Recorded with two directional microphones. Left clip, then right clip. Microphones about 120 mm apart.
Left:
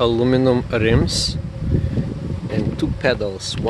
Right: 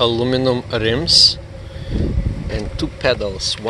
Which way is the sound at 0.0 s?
40° left (ahead or behind).